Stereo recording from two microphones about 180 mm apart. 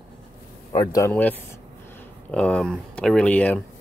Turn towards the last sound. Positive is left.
turn(degrees=5)  # may be behind; listen again after turning